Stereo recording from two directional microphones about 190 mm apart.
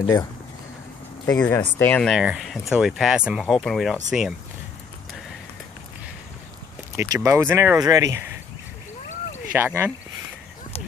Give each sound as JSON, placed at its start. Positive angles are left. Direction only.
{"t": 1.2, "sound": "speech", "side_deg": 15}
{"t": 7.0, "sound": "speech", "side_deg": -15}
{"t": 9.6, "sound": "speech", "side_deg": -10}